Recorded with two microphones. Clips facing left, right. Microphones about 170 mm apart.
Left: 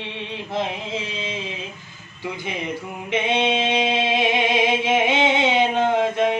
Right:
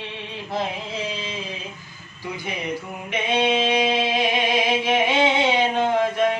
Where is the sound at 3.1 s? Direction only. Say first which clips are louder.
Left 1 dB; 25° left (ahead or behind).